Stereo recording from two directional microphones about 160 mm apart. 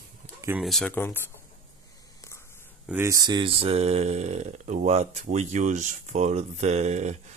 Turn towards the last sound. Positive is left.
turn(degrees=-45)  # may be behind; listen again after turning